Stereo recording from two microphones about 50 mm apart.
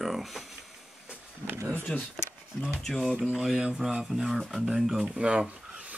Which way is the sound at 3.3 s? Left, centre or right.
Centre.